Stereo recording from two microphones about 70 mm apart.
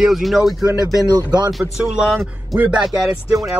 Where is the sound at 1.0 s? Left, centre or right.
Right.